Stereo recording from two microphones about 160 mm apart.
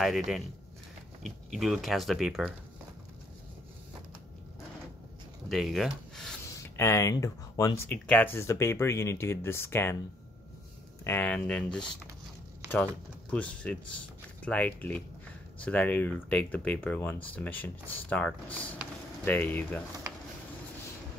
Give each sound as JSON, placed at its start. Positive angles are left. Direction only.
{"t": 0.0, "sound": "speech", "side_deg": 0}
{"t": 5.5, "sound": "speech", "side_deg": 0}
{"t": 6.4, "sound": "speech", "side_deg": 15}
{"t": 8.1, "sound": "speech", "side_deg": 10}
{"t": 11.1, "sound": "speech", "side_deg": 10}